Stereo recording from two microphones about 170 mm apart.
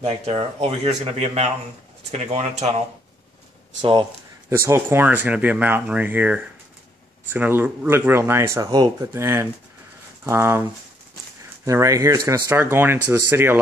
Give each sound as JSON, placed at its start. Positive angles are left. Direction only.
{"t": 0.0, "sound": "speech", "side_deg": -35}
{"t": 4.5, "sound": "speech", "side_deg": -15}